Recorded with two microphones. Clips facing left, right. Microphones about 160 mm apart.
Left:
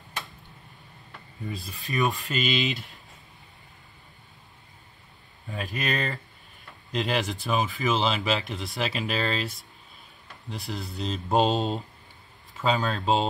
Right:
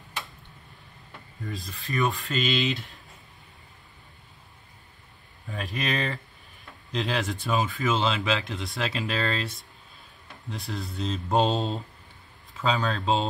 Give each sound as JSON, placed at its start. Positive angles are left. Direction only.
{"t": 1.7, "sound": "rub", "side_deg": 15}
{"t": 2.2, "sound": "speech", "side_deg": 5}
{"t": 5.5, "sound": "speech", "side_deg": 0}